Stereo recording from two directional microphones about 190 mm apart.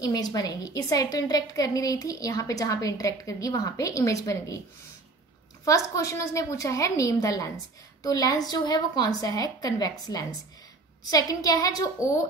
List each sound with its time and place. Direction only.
0.0 s a woman's voice: 20° left (ahead or behind)
5.7 s a woman's voice: 15° left (ahead or behind)